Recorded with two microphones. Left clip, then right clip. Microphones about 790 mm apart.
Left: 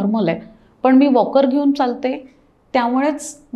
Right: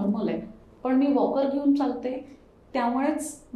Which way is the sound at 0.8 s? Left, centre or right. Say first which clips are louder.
Left 10 dB; left.